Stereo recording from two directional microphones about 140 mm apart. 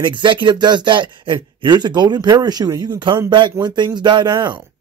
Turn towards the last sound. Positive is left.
turn(degrees=-30)  # may be behind; listen again after turning